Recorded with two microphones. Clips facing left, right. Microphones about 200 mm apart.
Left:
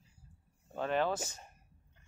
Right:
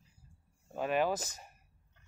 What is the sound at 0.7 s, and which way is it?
Speech, 10° right (ahead or behind).